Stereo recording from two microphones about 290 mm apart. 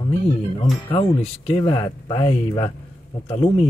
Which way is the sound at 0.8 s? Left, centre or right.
Centre.